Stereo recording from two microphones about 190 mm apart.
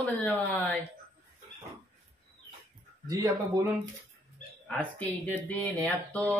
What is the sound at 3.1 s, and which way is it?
Speech, 15° right (ahead or behind).